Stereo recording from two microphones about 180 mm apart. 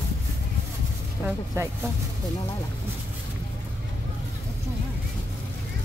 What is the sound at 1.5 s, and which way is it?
Speech, 15° right (ahead or behind).